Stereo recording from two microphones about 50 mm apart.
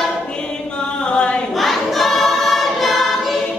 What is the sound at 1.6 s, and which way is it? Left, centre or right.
Choir, centre.